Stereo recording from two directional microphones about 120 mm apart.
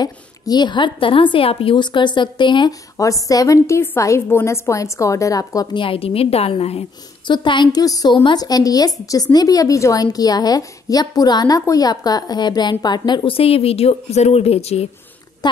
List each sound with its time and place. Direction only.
0.0 s a woman's voice: 35° left (ahead or behind)
3.3 s a woman's voice: 30° left (ahead or behind)
5.9 s a woman's voice: 55° left (ahead or behind)
7.2 s a woman's voice: 40° left (ahead or behind); by 14.9 s 60° left (ahead or behind)
15.4 s a woman's voice: 35° left (ahead or behind)